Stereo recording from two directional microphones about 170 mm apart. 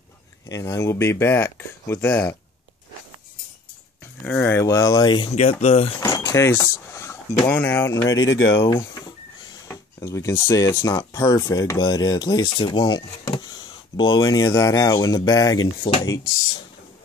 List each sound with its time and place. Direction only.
0.5 s speech: 20° left (ahead or behind)
4.0 s speech: 10° left (ahead or behind); by 5.9 s 35° left (ahead or behind)
5.9 s a sound: 20° left (ahead or behind)
7.4 s speech: 10° left (ahead or behind); by 16.1 s 30° left (ahead or behind)